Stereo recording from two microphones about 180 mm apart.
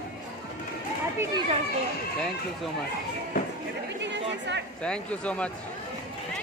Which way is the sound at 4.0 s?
75° right (ahead or behind).